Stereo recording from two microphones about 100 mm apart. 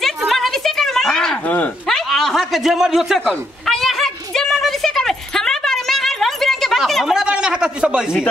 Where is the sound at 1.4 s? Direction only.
15° left (ahead or behind).